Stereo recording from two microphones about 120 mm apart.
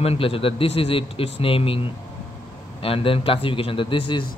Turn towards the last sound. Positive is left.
turn(degrees=45)  # may be behind; listen again after turning